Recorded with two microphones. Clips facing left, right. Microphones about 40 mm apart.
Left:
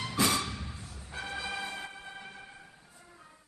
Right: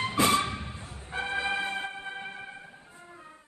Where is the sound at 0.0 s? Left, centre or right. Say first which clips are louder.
Right 5 dB; right.